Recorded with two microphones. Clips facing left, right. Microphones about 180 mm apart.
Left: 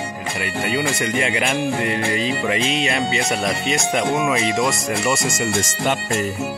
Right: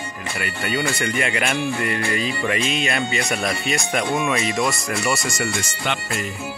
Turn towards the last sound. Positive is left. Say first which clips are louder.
# left 5 dB
turn(degrees=45)  # may be behind; listen again after turning